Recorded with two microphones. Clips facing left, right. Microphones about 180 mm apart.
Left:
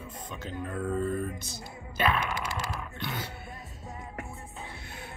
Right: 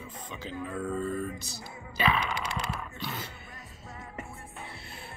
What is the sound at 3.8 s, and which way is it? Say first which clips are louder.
Music: left 2 dB; 20° left (ahead or behind).